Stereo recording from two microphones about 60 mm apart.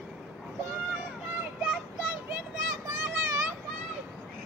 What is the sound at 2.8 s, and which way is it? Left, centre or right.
Children playing, right.